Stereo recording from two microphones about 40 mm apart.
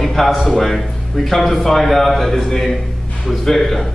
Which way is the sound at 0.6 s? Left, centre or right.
Centre.